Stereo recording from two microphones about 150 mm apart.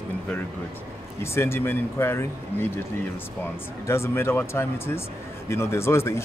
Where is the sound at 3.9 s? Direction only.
20° left (ahead or behind).